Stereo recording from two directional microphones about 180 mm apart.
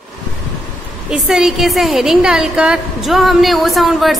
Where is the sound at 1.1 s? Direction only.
5° right (ahead or behind).